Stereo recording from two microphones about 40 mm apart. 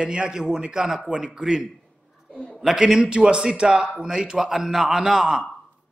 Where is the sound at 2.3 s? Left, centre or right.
Left.